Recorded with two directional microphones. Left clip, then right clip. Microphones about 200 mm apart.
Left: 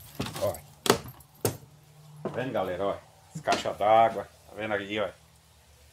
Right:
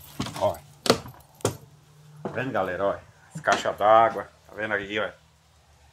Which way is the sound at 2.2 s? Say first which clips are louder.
Right 3 dB; 15° right (ahead or behind).